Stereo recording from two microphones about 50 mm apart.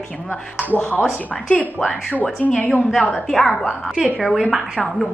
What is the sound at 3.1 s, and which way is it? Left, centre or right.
Speech, centre.